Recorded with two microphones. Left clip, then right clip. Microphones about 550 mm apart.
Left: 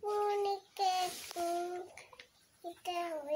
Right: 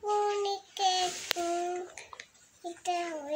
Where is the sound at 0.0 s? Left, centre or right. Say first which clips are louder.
Right 4 dB; left.